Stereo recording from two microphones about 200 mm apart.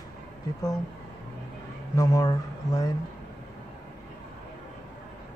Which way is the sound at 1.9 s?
15° left (ahead or behind).